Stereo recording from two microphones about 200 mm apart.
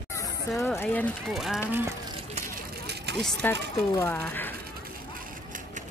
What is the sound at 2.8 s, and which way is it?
Vehicle, 55° right (ahead or behind).